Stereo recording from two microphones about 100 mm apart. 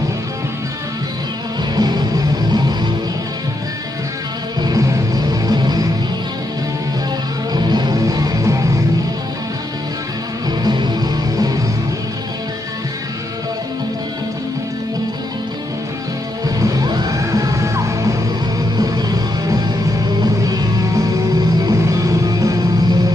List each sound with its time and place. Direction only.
1.8 s music: 45° right (ahead or behind)
4.6 s music: 40° right (ahead or behind)
7.5 s music: 45° right (ahead or behind)
10.6 s music: 45° right (ahead or behind)
16.4 s music: 35° right (ahead or behind)